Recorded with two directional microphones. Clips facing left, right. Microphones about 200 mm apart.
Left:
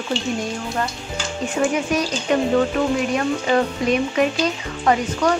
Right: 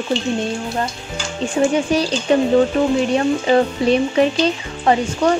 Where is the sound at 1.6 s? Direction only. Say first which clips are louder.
Right 4 dB; 30° right (ahead or behind).